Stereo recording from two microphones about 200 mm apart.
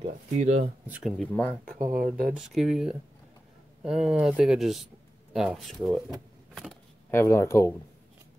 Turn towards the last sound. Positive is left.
turn(degrees=15)  # may be behind; listen again after turning